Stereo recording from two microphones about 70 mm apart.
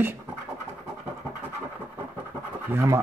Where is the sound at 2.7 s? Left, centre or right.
Right.